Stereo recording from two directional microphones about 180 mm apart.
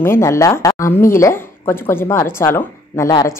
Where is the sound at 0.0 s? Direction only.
15° left (ahead or behind).